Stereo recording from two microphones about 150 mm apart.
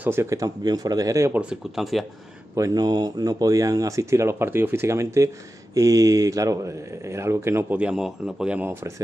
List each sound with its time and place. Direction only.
0.0 s speech: 15° right (ahead or behind)
1.4 s speech: 5° right (ahead or behind)
2.5 s speech: 25° right (ahead or behind)